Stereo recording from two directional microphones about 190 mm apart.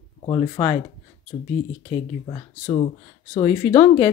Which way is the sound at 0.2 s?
25° left (ahead or behind).